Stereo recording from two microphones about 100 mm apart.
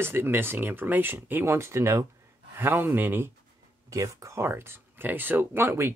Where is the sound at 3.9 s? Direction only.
30° right (ahead or behind).